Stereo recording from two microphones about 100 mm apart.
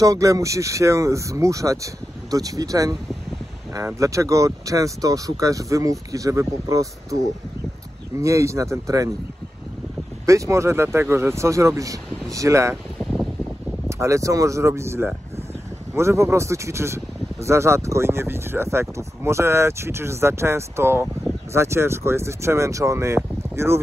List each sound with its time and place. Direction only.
0.0 s speech: 35° right (ahead or behind)
8.2 s speech: 30° right (ahead or behind)
10.2 s speech: 30° right (ahead or behind)
13.8 s speech: 30° right (ahead or behind)